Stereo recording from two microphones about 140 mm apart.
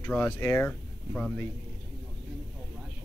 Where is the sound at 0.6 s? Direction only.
10° left (ahead or behind).